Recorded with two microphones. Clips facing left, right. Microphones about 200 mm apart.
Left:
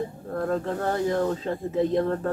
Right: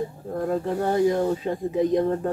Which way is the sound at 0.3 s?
15° right (ahead or behind).